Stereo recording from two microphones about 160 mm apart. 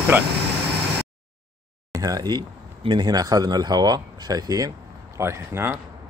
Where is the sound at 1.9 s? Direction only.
20° right (ahead or behind).